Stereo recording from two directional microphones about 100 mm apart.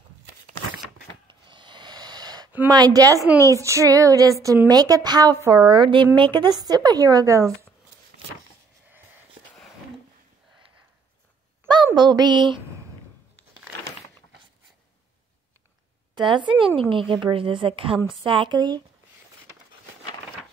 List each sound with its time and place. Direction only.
1.5 s a sound: 50° right (ahead or behind)
2.7 s female singing: 40° right (ahead or behind)
5.7 s a woman's voice: 55° right (ahead or behind)
6.6 s female singing: 40° right (ahead or behind)
11.6 s a sound: 45° right (ahead or behind)
16.2 s a woman's voice: 55° right (ahead or behind)